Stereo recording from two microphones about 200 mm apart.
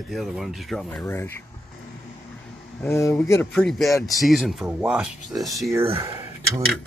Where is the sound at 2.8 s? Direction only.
15° left (ahead or behind).